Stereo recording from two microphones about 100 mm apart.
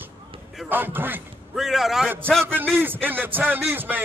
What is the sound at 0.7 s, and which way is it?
Speech, 20° right (ahead or behind).